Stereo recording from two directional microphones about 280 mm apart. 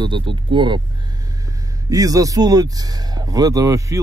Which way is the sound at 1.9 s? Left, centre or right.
Centre.